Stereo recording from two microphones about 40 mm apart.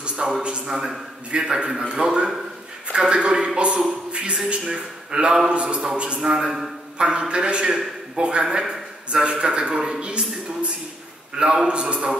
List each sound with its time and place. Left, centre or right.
0.0 s a man's voice: right